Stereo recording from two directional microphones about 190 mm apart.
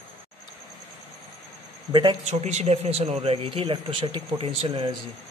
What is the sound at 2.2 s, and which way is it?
A man's voice, 35° right (ahead or behind).